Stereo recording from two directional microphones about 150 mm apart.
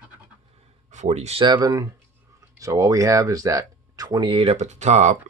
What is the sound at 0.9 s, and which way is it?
Speech, 50° right (ahead or behind).